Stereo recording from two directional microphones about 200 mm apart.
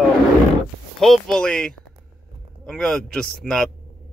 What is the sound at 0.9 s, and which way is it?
Speech, centre (ahead or behind).